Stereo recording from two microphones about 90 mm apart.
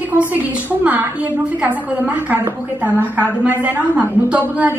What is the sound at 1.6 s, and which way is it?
A woman's voice, 15° right (ahead or behind).